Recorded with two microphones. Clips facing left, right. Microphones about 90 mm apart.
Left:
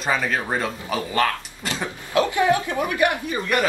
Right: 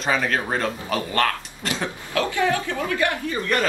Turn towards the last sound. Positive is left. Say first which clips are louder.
# even
turn(degrees=15)  # may be behind; listen again after turning